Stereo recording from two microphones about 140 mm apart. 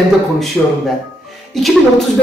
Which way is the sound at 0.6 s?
Centre (ahead or behind).